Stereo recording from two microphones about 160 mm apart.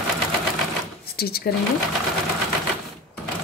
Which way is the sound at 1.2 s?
75° left (ahead or behind).